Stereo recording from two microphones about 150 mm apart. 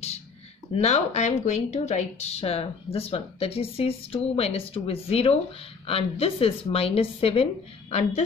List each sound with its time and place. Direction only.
0.7 s speech: 45° left (ahead or behind)